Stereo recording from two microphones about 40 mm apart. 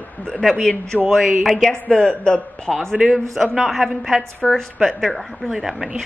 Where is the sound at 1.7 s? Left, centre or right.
Centre.